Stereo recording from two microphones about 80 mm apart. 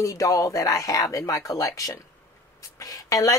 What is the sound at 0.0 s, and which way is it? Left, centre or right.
Speech, left.